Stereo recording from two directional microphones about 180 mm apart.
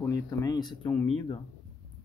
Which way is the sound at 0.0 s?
20° left (ahead or behind).